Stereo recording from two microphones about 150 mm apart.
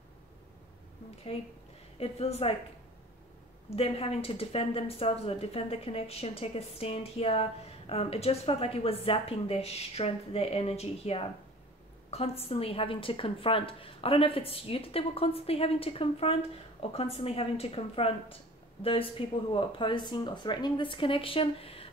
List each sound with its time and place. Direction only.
2.0 s a woman's voice: 45° left (ahead or behind)
3.7 s speech: 40° left (ahead or behind)